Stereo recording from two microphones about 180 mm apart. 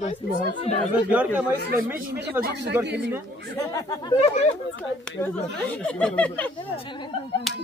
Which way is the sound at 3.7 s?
20° left (ahead or behind).